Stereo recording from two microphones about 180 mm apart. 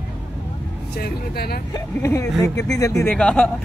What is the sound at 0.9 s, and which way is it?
Speech, 60° left (ahead or behind).